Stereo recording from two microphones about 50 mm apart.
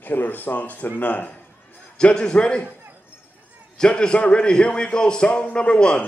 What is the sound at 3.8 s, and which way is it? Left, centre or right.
A man's voice, centre.